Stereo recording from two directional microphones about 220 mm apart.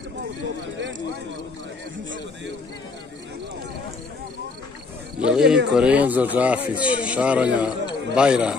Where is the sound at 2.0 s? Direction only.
55° right (ahead or behind).